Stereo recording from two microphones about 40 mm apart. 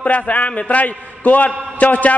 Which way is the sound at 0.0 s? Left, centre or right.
Left.